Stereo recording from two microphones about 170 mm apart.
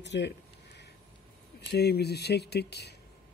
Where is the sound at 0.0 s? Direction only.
90° left.